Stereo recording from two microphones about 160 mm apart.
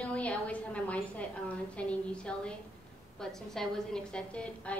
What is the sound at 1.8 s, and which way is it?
A woman's voice, 5° left (ahead or behind).